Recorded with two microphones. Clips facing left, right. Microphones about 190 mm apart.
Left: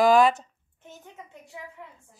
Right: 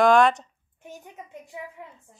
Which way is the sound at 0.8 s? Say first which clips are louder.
Right 3 dB; 15° right (ahead or behind).